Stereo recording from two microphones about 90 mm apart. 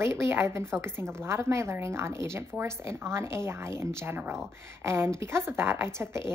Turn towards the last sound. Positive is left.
turn(degrees=-30)  # may be behind; listen again after turning